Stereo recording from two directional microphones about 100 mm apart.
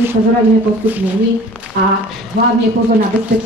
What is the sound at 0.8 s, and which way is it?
Speech, 20° right (ahead or behind).